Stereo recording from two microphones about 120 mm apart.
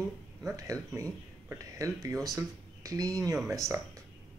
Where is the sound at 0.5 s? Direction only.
25° right (ahead or behind).